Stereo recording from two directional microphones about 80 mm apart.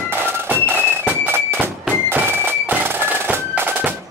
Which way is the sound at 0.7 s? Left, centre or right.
Right.